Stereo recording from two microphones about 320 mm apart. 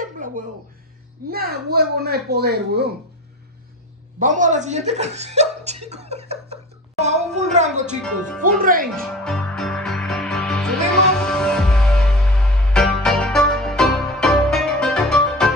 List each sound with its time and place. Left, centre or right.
1.3 s speech: right
4.2 s speech: right
7.9 s speech: centre
8.4 s speech: right
9.0 s music: centre